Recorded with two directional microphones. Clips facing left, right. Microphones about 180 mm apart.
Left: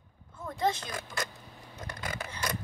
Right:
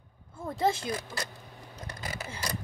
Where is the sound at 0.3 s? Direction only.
30° right (ahead or behind).